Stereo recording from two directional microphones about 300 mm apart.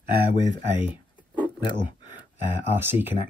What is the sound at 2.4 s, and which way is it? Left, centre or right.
Speech, centre.